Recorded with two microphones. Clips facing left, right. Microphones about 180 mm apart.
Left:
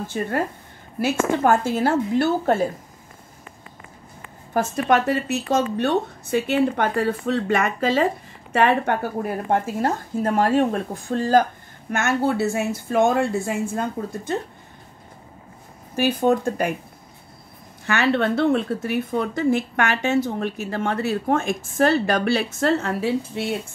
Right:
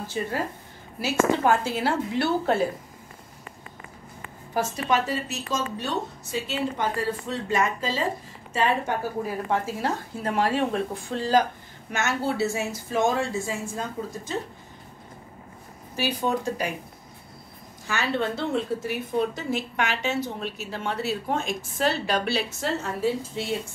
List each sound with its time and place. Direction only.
0.9 s a woman's voice: 50° left (ahead or behind)
4.6 s a woman's voice: 60° left (ahead or behind)
16.0 s a woman's voice: 55° left (ahead or behind)
17.8 s a woman's voice: 65° left (ahead or behind)